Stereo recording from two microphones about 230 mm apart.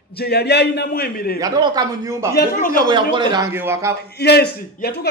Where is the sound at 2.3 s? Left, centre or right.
Left.